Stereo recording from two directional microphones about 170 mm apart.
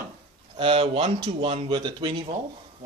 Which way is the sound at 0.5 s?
30° right (ahead or behind).